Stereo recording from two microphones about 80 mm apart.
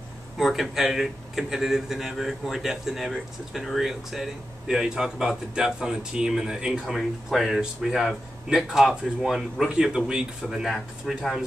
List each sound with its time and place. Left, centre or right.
0.4 s speech: centre